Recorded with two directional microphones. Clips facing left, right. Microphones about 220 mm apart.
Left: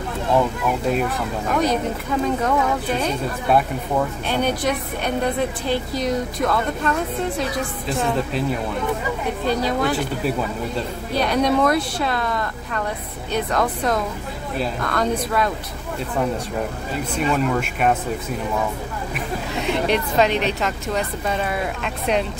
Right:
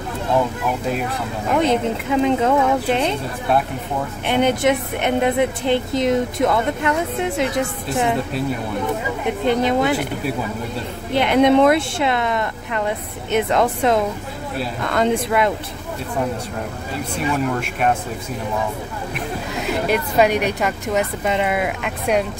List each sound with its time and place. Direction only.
1.6 s a woman's voice: 25° right (ahead or behind)
4.3 s a woman's voice: 20° right (ahead or behind)
9.5 s a woman's voice: 20° right (ahead or behind)
11.1 s a woman's voice: 20° right (ahead or behind)
17.5 s speech: centre (ahead or behind)
19.6 s a woman's voice: 5° right (ahead or behind)